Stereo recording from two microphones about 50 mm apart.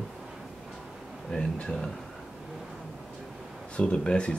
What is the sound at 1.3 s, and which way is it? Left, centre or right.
Speech, centre.